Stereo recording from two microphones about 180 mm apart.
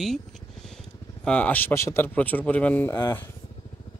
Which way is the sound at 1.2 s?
10° left (ahead or behind).